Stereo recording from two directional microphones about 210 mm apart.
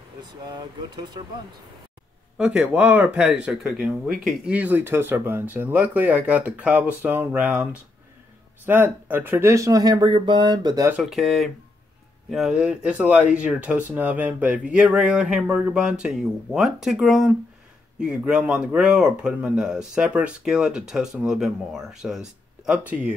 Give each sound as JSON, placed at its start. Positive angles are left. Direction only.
{"t": 0.2, "sound": "speech", "side_deg": -20}
{"t": 2.3, "sound": "speech", "side_deg": -5}
{"t": 8.6, "sound": "speech", "side_deg": -10}
{"t": 10.9, "sound": "speech", "side_deg": 0}